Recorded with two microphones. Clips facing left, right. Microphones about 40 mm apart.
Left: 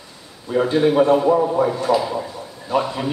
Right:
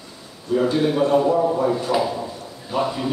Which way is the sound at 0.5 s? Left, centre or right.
Left.